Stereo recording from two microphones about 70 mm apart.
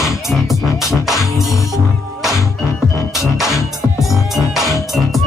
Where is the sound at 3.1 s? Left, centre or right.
Centre.